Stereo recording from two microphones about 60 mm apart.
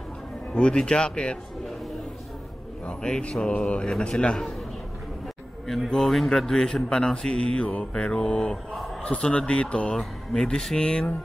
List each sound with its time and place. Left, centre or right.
0.6 s a man's voice: centre
2.9 s a man's voice: centre
5.9 s a man's voice: centre